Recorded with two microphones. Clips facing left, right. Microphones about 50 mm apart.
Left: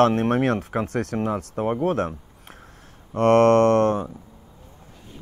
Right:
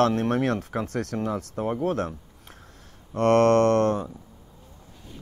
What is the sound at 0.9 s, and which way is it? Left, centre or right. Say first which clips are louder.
Mantra: left 3 dB; centre.